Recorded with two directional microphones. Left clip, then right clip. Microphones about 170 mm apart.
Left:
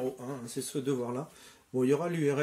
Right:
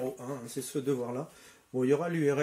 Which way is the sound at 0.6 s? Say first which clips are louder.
Right 1 dB; 25° left (ahead or behind).